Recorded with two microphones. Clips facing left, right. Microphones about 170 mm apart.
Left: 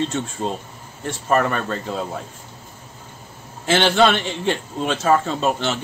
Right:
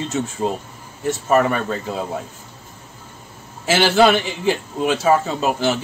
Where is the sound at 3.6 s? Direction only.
5° right (ahead or behind).